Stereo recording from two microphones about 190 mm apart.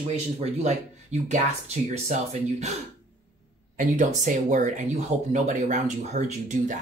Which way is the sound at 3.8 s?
40° right (ahead or behind).